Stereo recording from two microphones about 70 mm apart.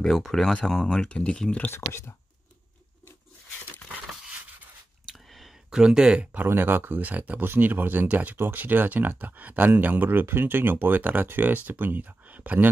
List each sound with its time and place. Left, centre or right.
0.0 s speech: centre
1.7 s speech: left
3.9 s crushing: right
5.3 s a sound: centre
6.3 s speech: right